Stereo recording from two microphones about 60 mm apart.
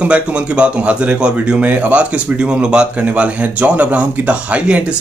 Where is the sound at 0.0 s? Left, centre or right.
Centre.